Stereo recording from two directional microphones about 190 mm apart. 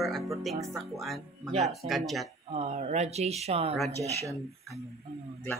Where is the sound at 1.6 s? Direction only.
Centre (ahead or behind).